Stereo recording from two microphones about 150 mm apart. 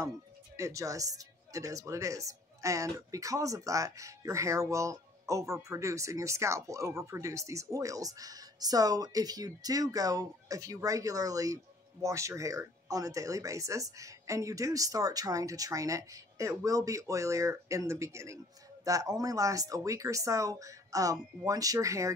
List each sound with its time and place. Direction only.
0.6 s speech: 20° right (ahead or behind)